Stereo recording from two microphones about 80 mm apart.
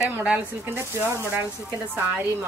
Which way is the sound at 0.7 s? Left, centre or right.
Right.